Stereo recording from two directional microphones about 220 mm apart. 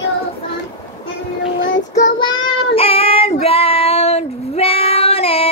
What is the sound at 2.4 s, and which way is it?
Child singing, 25° left (ahead or behind).